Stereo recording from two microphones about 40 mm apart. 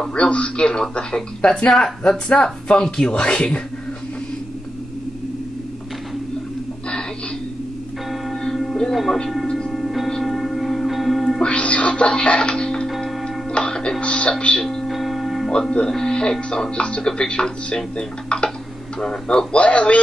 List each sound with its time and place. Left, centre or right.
0.1 s speech: left
8.1 s a sound: centre
8.9 s speech: centre
9.7 s music: centre
11.4 s music: left
12.8 s music: centre
13.5 s music: left
14.0 s speech: left
14.6 s speech: centre
14.9 s church bell: centre
16.1 s speech: left